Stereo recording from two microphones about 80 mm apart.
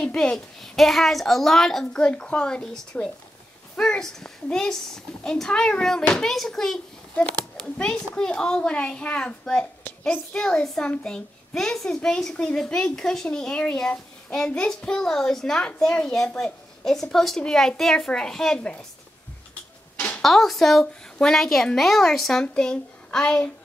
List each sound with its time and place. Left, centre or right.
0.0 s a child's voice: centre
9.8 s a child's voice: left
10.3 s a child's voice: centre
20.2 s a child's voice: centre